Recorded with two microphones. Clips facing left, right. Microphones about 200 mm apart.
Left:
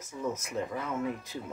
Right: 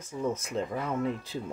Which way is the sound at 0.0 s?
30° right (ahead or behind).